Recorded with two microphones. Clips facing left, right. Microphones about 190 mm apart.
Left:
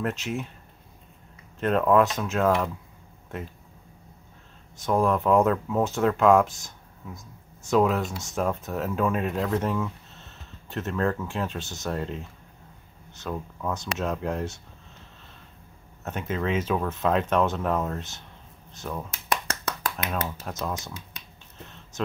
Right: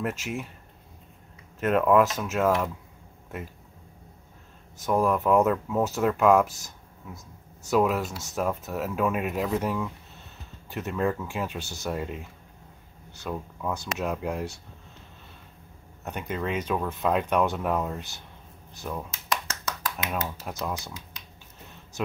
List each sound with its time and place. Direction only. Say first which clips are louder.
0.0 s speech: left 2 dB; 5° right (ahead or behind)
1.6 s speech: even; 5° right (ahead or behind)
4.8 s speech: left 1 dB; 5° right (ahead or behind)
16.0 s speech: left 2 dB; centre (ahead or behind)
19.2 s a sound: left 3 dB; 60° left (ahead or behind)
20.2 s speech: left 1 dB; centre (ahead or behind)